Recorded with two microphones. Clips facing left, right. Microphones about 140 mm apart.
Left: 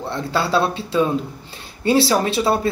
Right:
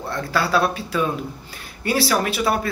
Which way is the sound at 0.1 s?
25° left (ahead or behind).